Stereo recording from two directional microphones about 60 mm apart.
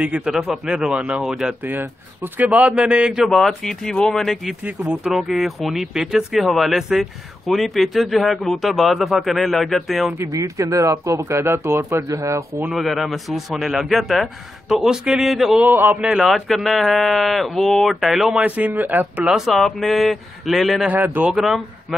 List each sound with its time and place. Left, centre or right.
0.0 s speech: centre
1.6 s speech: right; by 3.3 s centre
3.4 s speech: centre
4.6 s speech: right
5.1 s speech: centre
10.2 s speech: right
11.1 s speech: right
12.7 s speech: centre
16.3 s speech: centre
18.4 s speech: right
19.2 s speech: centre
20.8 s speech: right